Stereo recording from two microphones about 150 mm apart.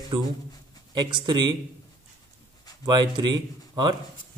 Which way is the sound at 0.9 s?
30° right (ahead or behind).